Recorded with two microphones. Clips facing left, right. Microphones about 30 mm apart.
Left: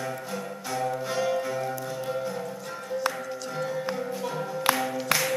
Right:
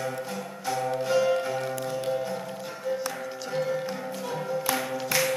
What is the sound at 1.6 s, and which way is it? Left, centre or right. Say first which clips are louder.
Music: right 1 dB; right.